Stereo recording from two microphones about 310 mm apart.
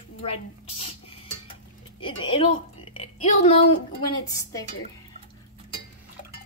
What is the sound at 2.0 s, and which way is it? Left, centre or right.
A woman's voice, centre.